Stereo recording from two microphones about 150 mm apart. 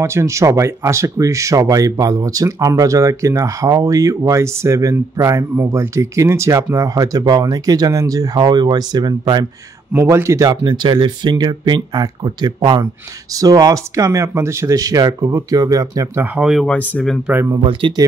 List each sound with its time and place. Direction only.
0.0 s speech: 20° right (ahead or behind)
16.3 s speech: centre (ahead or behind)
17.3 s speech: 15° right (ahead or behind)
17.6 s speech: 35° right (ahead or behind)